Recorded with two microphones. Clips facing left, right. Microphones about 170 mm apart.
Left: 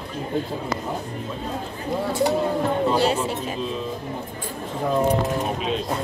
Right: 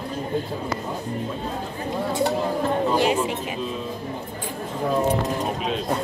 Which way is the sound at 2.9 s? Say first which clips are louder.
Right 2 dB; 15° right (ahead or behind).